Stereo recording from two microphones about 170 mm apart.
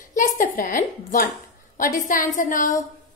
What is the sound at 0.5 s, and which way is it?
A woman's voice, 50° left (ahead or behind).